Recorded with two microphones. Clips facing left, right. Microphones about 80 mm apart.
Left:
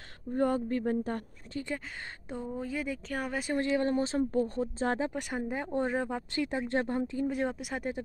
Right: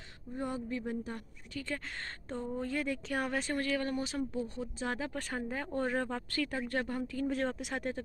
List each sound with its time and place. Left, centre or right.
0.4 s speech: left
1.5 s speech: left
2.2 s speech: centre
3.5 s speech: left
4.3 s speech: left
5.1 s speech: centre
7.2 s speech: centre